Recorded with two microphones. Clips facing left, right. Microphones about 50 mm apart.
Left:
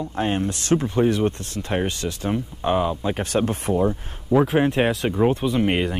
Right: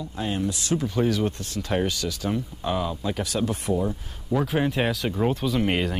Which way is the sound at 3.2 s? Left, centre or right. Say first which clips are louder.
Left 4 dB; left.